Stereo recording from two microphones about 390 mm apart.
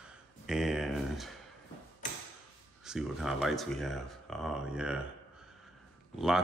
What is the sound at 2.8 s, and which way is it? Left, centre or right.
Speech, centre.